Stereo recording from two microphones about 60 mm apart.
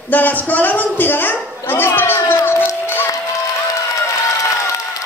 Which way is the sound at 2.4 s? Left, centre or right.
Left.